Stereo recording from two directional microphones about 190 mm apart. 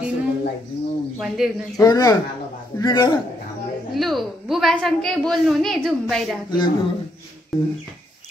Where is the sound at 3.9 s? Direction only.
Centre (ahead or behind).